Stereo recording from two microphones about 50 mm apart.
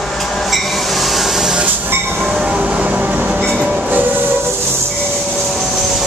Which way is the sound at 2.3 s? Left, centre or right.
Right.